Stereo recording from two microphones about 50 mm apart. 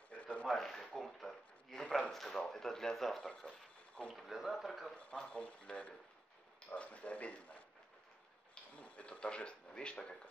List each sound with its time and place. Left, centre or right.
0.1 s a sound: left
0.5 s speech: centre
0.9 s a sound: centre
2.4 s speech: centre
5.3 s speech: left
8.7 s speech: left